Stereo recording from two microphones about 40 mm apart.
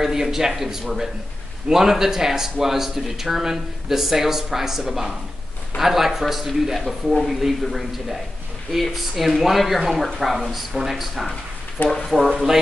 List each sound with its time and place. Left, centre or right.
0.0 s speech: centre